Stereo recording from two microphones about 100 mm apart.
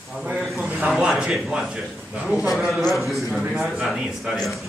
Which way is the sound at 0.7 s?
5° right (ahead or behind).